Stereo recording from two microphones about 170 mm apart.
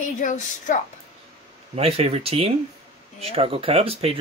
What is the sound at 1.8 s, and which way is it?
Speech, 35° right (ahead or behind).